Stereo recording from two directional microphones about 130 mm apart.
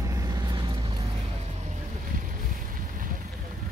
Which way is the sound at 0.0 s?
25° right (ahead or behind).